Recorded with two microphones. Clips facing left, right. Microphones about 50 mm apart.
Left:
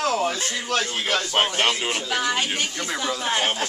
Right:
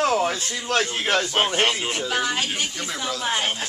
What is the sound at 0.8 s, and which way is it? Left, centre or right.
Speech, centre.